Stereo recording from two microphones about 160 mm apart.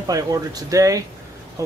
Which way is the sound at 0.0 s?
20° right (ahead or behind).